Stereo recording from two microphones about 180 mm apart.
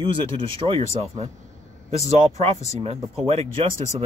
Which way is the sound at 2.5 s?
15° left (ahead or behind).